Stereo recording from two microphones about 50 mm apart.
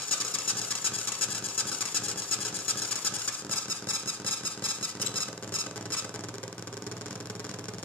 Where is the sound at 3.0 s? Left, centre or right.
Left.